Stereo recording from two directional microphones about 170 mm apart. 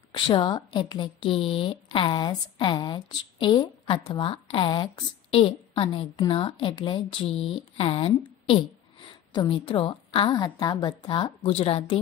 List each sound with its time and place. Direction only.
0.1 s speech: 25° left (ahead or behind)
9.3 s speech: 25° left (ahead or behind)